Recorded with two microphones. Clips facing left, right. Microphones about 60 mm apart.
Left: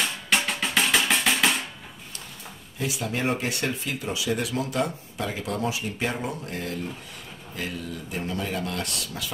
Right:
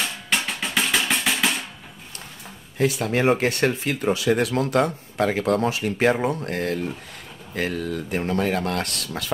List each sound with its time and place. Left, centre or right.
0.0 s music: centre
2.8 s speech: right